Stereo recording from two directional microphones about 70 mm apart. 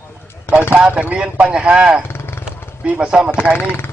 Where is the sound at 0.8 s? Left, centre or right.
Centre.